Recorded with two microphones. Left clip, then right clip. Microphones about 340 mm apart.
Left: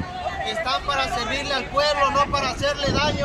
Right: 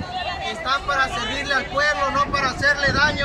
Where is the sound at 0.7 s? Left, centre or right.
Centre.